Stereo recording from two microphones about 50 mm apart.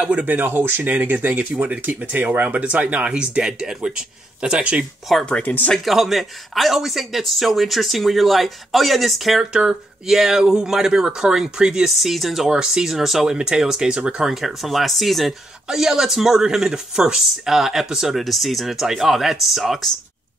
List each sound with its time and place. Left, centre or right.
0.0 s speech: right
5.4 s speech: left
5.9 s speech: centre
9.4 s a man's voice: centre
12.0 s speech: centre
12.4 s a man's voice: centre
14.3 s a man's voice: centre
18.1 s speech: centre